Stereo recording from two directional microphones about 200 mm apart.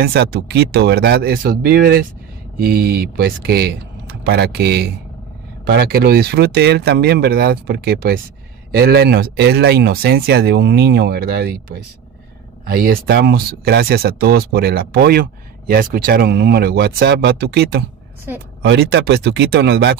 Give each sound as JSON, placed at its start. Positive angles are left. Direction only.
{"t": 0.0, "sound": "speech", "side_deg": -50}